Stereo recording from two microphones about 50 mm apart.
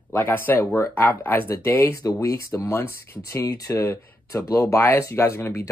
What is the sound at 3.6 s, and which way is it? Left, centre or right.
Speech, left.